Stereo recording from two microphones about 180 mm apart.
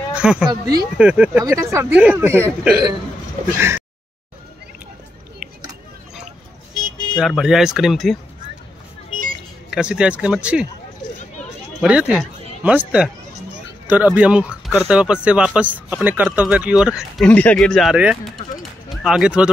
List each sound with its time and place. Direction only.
0.1 s speech: 5° right (ahead or behind)
0.5 s speech: 20° right (ahead or behind)
0.9 s speech: 5° right (ahead or behind)
3.5 s a sound: 15° right (ahead or behind)
7.2 s speech: centre (ahead or behind)
9.7 s speech: 5° right (ahead or behind)
11.8 s speech: 5° right (ahead or behind)
17.3 s speech: 10° left (ahead or behind)
18.6 s a sound: 5° right (ahead or behind)